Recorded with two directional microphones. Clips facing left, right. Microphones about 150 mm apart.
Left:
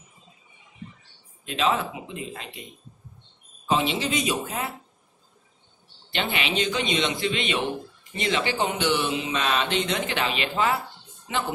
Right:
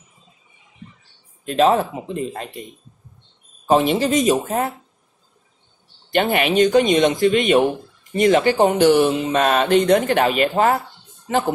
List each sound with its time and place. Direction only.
1.4 s speech: 45° right (ahead or behind)
3.6 s speech: 45° right (ahead or behind)
6.0 s speech: 45° right (ahead or behind)